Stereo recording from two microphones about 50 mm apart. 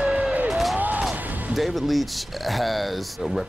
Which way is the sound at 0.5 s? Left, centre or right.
Centre.